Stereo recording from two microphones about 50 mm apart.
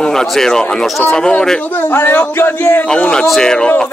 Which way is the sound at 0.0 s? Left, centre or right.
Centre.